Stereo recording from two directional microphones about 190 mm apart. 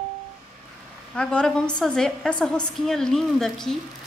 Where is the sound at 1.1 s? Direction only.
5° left (ahead or behind).